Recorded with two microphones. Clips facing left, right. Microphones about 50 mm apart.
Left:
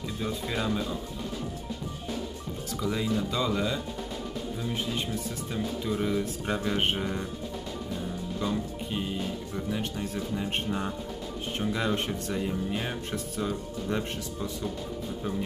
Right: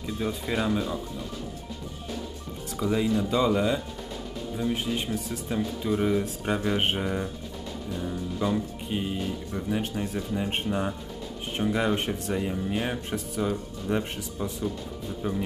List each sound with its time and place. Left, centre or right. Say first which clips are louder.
0.2 s speech: right 3 dB; centre
2.8 s speech: right 4 dB; centre
5.5 s speech: right 4 dB; centre
8.4 s speech: right 3 dB; centre